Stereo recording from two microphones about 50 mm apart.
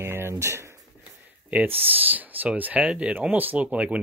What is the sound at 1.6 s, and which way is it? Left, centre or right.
Speech, right.